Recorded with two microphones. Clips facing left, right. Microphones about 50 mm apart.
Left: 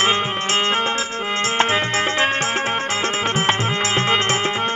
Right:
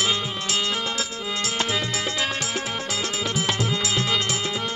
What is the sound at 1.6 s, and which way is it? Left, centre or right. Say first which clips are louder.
Music: left 8 dB; left.